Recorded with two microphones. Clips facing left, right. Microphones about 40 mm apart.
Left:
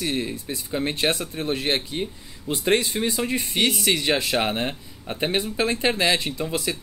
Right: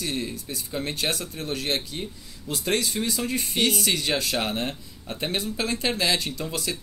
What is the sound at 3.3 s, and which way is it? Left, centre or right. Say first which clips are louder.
Speech: left 1 dB; centre.